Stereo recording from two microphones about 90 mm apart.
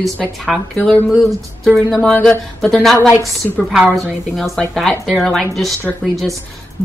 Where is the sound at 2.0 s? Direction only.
10° left (ahead or behind).